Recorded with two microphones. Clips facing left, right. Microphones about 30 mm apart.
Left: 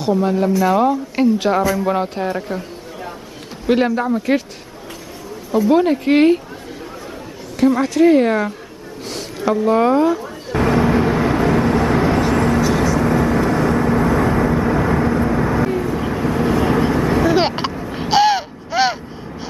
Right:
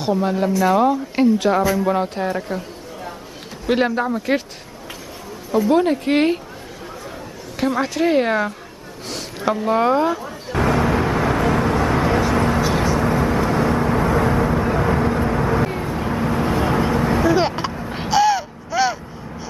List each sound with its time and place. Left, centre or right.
0.1 s speech: centre
3.6 s speech: centre
5.7 s speech: centre
7.5 s speech: centre
9.1 s a sound: centre
13.0 s vehicle: centre
17.3 s vehicle: left
17.7 s vehicle: centre
18.0 s a sound: left